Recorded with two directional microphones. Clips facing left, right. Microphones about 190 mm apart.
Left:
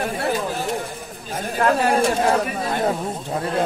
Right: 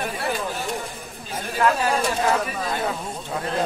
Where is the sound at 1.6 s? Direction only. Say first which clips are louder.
Left 3 dB; 40° left (ahead or behind).